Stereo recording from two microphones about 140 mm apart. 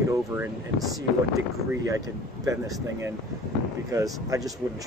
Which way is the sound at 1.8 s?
25° right (ahead or behind).